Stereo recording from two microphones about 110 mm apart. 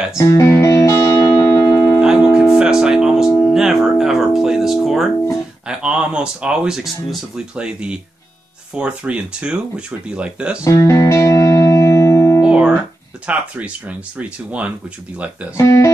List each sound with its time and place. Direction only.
0.3 s music: 25° left (ahead or behind)
2.0 s music: 10° right (ahead or behind)
5.7 s speech: 10° right (ahead or behind)
10.6 s music: 30° left (ahead or behind)
12.4 s guitar: 10° right (ahead or behind)
13.3 s speech: 10° right (ahead or behind)
15.5 s speech: 25° left (ahead or behind)